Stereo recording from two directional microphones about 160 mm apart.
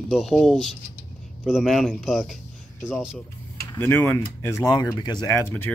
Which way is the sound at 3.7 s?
10° left (ahead or behind).